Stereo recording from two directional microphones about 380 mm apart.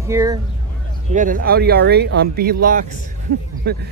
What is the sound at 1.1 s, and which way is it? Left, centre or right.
Speech, right.